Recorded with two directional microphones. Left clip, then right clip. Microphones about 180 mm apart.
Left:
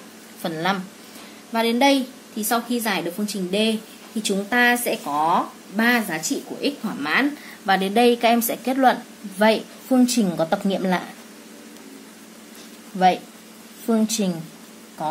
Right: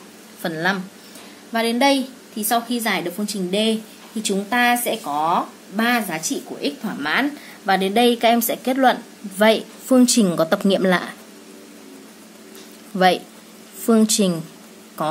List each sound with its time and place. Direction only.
0.4 s a woman's voice: 10° right (ahead or behind)
9.4 s a woman's voice: 25° right (ahead or behind)
13.8 s a woman's voice: 30° right (ahead or behind)